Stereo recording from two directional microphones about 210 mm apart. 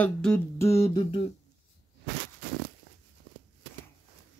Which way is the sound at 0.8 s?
20° left (ahead or behind).